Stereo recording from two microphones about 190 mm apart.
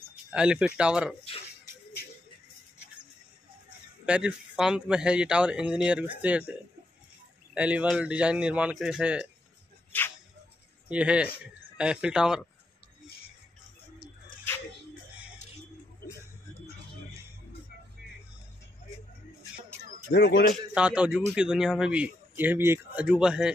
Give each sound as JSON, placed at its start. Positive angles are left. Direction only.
{"t": 0.1, "sound": "speech", "side_deg": -5}
{"t": 4.0, "sound": "speech", "side_deg": -5}
{"t": 7.5, "sound": "speech", "side_deg": -5}
{"t": 10.9, "sound": "speech", "side_deg": -5}
{"t": 20.1, "sound": "a man's voice", "side_deg": 60}
{"t": 20.7, "sound": "speech", "side_deg": -5}